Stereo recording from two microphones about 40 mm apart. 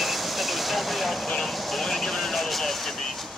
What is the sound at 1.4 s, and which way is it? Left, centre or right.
Speech, centre.